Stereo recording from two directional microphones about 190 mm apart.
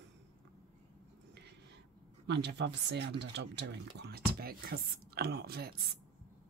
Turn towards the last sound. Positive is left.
turn(degrees=-55)  # may be behind; listen again after turning